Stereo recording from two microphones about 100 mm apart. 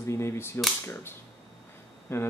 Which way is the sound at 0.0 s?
25° left (ahead or behind).